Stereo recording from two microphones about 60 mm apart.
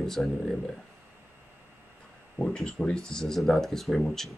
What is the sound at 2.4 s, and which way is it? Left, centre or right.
Speech, centre.